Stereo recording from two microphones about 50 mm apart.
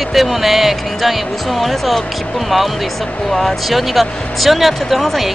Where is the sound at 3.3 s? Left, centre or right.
Centre.